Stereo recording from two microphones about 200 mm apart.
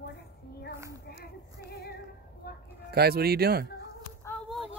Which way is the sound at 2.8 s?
50° right (ahead or behind).